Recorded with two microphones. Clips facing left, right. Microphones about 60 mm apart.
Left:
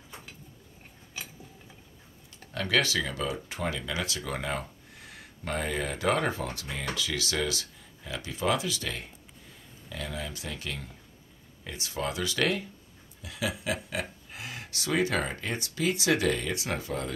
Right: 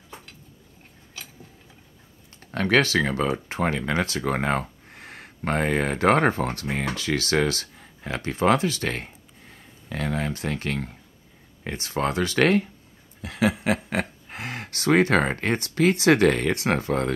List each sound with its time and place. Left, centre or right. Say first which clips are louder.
2.5 s speech: right 7 dB; right